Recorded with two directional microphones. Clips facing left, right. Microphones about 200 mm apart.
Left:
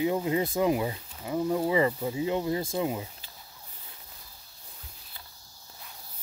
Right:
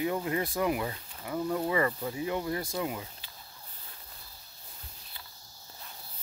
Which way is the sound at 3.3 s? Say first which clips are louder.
Left 1 dB; 10° left (ahead or behind).